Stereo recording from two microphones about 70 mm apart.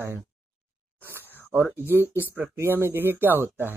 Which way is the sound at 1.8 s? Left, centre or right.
Right.